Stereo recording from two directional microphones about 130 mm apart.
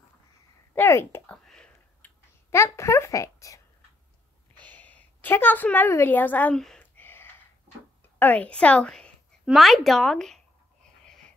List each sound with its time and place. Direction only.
0.7 s speech: 20° left (ahead or behind)
1.3 s a sound: 5° left (ahead or behind); by 3.6 s 25° left (ahead or behind)
4.6 s a woman's voice: 15° left (ahead or behind)
6.6 s a sound: 5° left (ahead or behind)
7.0 s gasp: 15° left (ahead or behind)
8.2 s a woman's voice: 10° left (ahead or behind)